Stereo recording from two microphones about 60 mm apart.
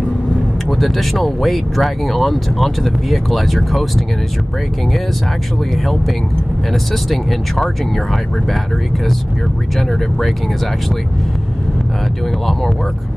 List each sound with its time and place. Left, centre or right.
0.7 s speech: centre
6.7 s speech: centre
9.8 s speech: centre